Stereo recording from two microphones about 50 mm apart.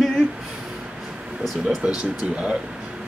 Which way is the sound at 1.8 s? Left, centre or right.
Right.